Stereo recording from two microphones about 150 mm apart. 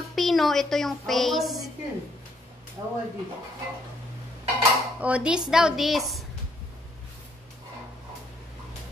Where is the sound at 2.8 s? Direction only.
25° right (ahead or behind).